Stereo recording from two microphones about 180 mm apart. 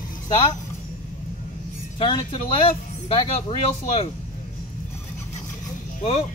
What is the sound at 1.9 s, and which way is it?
Speech, 30° left (ahead or behind).